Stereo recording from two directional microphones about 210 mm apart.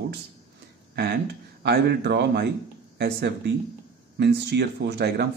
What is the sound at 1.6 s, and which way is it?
A man's voice, 50° right (ahead or behind).